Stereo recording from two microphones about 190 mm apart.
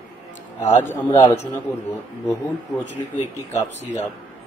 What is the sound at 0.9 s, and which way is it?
Speech, 20° left (ahead or behind).